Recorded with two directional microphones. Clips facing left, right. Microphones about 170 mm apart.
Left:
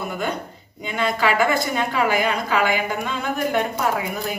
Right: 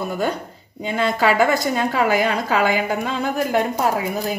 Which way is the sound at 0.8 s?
35° right (ahead or behind).